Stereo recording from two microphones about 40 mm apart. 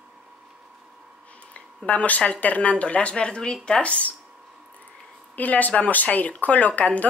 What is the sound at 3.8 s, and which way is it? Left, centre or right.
Speech, left.